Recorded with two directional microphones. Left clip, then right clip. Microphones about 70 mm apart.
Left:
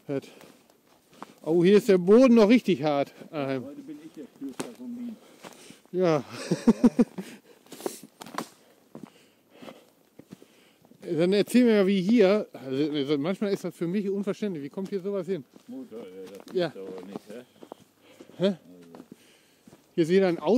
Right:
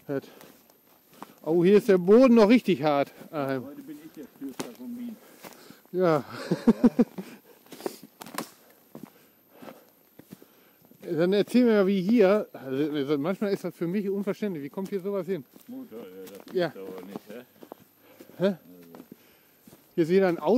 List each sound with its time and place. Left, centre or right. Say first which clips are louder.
0.0 s speech: even; left
1.4 s speech: even; left
2.1 s speech: right 1 dB; centre
3.2 s speech: right 1 dB; centre
4.2 s speech: even; right
5.6 s speech: even; left
8.2 s a sound: left 1 dB; right
8.9 s walk: even; right
11.1 s speech: even; left; by 17.3 s centre
17.6 s walk: left 1 dB; right
18.3 s a sound: even; left
18.9 s a sound: even; right
20.0 s speech: even; left